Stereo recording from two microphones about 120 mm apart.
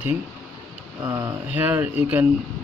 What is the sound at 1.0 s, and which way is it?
Speech, 30° right (ahead or behind).